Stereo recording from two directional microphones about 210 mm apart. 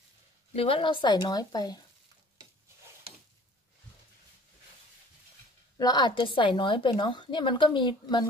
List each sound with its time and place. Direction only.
0.5 s a woman's voice: 25° left (ahead or behind)
5.8 s a woman's voice: 20° left (ahead or behind)